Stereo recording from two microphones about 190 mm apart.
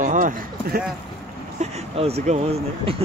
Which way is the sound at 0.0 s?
40° right (ahead or behind).